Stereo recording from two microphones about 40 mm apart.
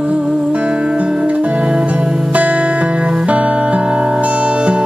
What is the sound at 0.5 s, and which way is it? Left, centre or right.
Music, right.